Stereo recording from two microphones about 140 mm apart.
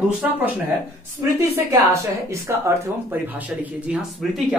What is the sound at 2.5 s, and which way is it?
Speech, 20° right (ahead or behind).